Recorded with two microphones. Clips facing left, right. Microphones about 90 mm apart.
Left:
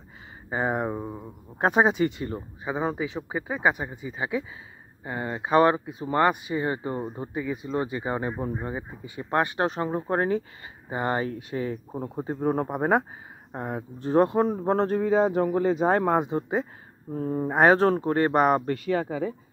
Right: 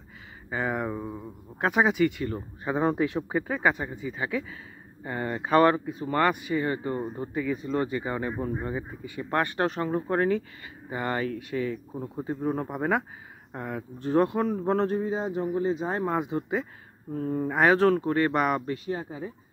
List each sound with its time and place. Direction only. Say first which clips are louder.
0.5 s speech: left 2 dB; 30° left (ahead or behind)
2.6 s speech: right 3 dB; 5° left (ahead or behind); by 14.9 s 35° left (ahead or behind)
14.9 s a man's voice: left 6 dB; 65° left (ahead or behind)
16.2 s speech: left 3 dB; 35° left (ahead or behind)
18.9 s speech: left 7 dB; 90° left